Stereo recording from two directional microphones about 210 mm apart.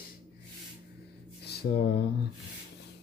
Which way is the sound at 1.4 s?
50° left (ahead or behind).